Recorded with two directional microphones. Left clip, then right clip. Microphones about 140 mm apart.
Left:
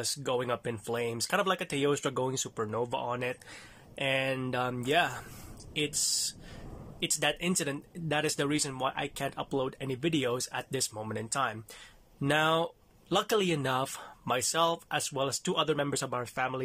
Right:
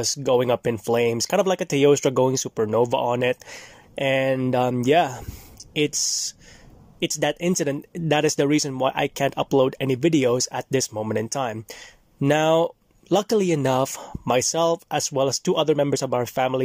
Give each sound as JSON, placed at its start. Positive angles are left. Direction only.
{"t": 0.0, "sound": "speech", "side_deg": -45}